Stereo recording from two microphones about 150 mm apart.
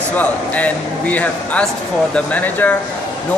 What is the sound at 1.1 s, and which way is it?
Speech, 10° left (ahead or behind).